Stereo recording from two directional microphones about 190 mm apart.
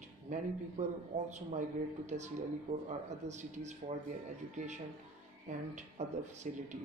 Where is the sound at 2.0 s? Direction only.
40° right (ahead or behind).